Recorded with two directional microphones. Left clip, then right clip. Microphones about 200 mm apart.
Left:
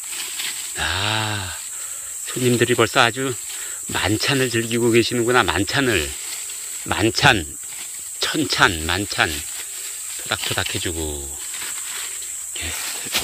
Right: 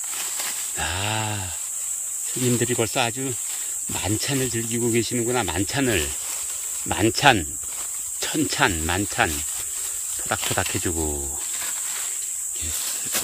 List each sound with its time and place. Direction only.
0.7 s a sound: 10° right (ahead or behind)
2.4 s speech: 5° right (ahead or behind)
10.7 s speech: 25° right (ahead or behind)